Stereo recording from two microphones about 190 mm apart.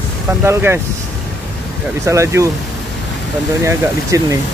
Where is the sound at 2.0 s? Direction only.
15° right (ahead or behind).